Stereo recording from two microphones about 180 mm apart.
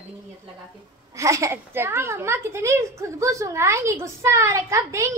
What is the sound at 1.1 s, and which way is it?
A woman's voice, 15° right (ahead or behind).